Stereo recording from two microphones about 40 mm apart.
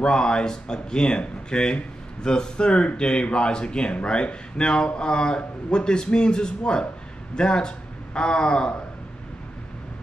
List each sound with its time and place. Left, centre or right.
0.0 s a man's voice: left